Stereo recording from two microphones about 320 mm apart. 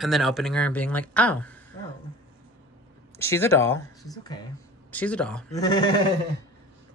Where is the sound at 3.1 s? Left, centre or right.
Centre.